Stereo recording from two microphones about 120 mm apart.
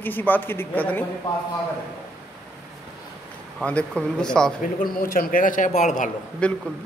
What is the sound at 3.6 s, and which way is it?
Speech, 10° left (ahead or behind).